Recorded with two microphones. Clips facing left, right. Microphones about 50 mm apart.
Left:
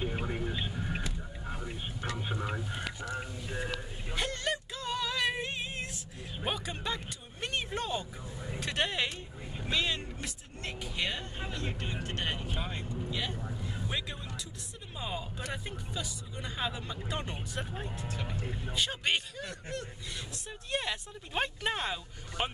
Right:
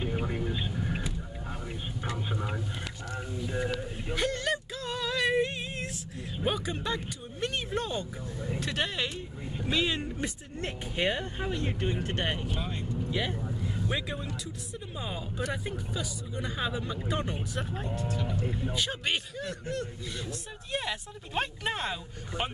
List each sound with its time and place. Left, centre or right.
0.0 s vehicle: centre
2.2 s speech: centre
3.5 s a sound: centre
6.4 s speech: centre
9.7 s speech: centre
9.9 s speech: right
11.3 s speech: centre
12.5 s speech: centre
13.1 s speech: right
13.8 s speech: centre
17.7 s speech: centre
18.1 s speech: left
18.4 s speech: centre